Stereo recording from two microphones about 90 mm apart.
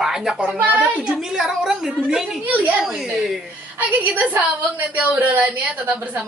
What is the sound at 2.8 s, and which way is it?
Speech, 5° right (ahead or behind).